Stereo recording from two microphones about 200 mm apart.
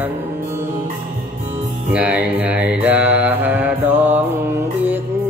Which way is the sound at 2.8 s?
10° right (ahead or behind).